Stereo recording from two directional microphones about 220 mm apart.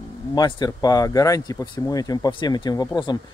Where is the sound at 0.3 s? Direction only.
20° left (ahead or behind).